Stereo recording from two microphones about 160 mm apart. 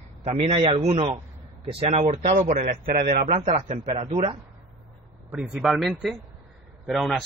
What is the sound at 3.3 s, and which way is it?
Speech, 50° right (ahead or behind).